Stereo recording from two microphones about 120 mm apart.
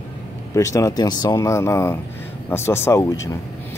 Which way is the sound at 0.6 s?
30° left (ahead or behind).